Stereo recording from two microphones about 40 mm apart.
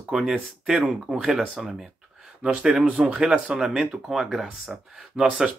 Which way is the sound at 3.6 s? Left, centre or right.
Centre.